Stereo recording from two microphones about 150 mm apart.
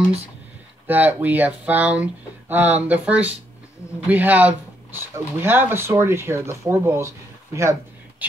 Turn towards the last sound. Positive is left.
turn(degrees=-20)  # may be behind; listen again after turning